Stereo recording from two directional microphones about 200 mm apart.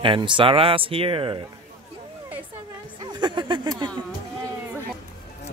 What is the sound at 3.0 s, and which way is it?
Speech, 20° right (ahead or behind).